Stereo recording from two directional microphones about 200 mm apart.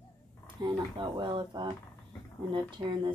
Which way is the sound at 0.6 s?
20° right (ahead or behind).